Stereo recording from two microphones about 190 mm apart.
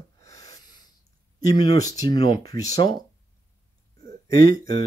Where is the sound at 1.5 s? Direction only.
20° left (ahead or behind).